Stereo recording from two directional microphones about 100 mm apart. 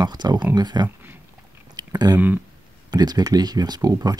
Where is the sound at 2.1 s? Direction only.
15° right (ahead or behind).